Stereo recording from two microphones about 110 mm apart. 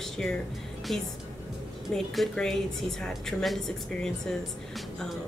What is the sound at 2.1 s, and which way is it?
A woman's voice, 5° left (ahead or behind).